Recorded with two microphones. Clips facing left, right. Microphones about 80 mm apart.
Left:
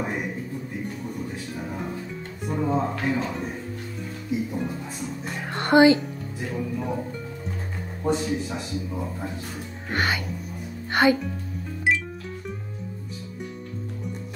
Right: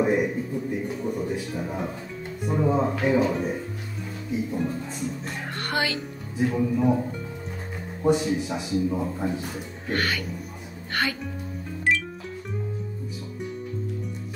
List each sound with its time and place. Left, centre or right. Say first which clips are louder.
0.0 s a sound: right 7 dB; centre
0.8 s music: right 4 dB; centre
2.4 s speech: right 2 dB; centre
5.6 s music: left 12 dB; left
5.9 s speech: right 4 dB; centre
9.8 s speech: left 1 dB; left
10.9 s music: left 8 dB; left